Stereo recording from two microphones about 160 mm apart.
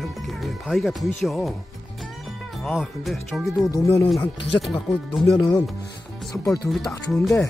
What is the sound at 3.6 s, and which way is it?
Speech, 20° left (ahead or behind).